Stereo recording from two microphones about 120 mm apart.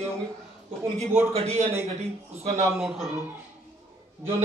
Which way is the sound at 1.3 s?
60° right (ahead or behind).